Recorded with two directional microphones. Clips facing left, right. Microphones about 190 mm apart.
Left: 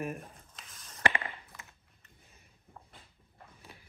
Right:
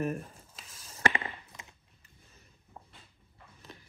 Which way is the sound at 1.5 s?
15° right (ahead or behind).